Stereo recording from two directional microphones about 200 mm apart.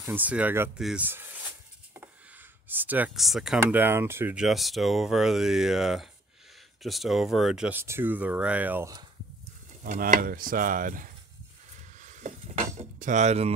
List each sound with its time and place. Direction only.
0.0 s speech: 10° right (ahead or behind)
2.7 s speech: 10° right (ahead or behind)
9.8 s speech: 40° right (ahead or behind)
12.0 s cutlery: 40° right (ahead or behind)